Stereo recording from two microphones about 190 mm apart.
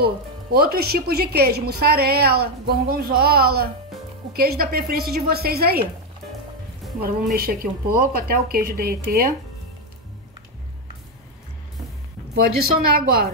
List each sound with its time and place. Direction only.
0.0 s a woman's voice: 55° right (ahead or behind)
7.3 s speech: 50° right (ahead or behind)
12.4 s speech: 50° right (ahead or behind)